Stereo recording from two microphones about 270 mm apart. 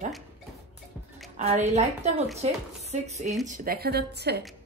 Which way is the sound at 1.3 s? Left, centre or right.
Right.